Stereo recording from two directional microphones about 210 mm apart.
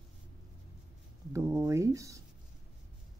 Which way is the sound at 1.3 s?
15° right (ahead or behind).